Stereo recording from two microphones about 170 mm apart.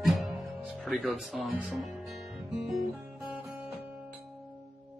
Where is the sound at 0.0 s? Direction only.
Centre (ahead or behind).